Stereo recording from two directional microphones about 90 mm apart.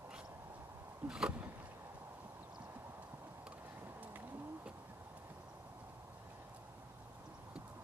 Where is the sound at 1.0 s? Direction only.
10° right (ahead or behind).